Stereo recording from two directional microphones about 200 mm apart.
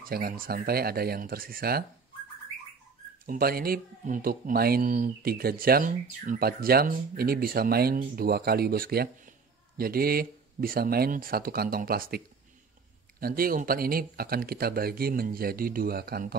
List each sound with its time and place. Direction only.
0.0 s speech: 45° right (ahead or behind)
3.3 s speech: 50° right (ahead or behind)
13.2 s speech: 45° right (ahead or behind)